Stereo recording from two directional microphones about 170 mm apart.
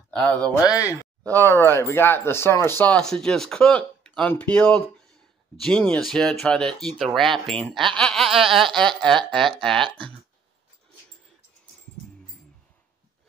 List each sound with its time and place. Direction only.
0.1 s speech: 5° left (ahead or behind)
0.7 s speech: 20° left (ahead or behind)